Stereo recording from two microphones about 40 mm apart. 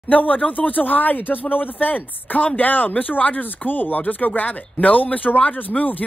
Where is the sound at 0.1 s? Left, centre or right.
Left.